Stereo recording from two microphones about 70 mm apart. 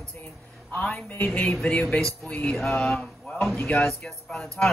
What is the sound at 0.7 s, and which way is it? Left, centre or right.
Speech, left.